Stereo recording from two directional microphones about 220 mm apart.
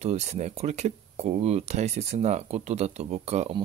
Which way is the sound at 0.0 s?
30° right (ahead or behind).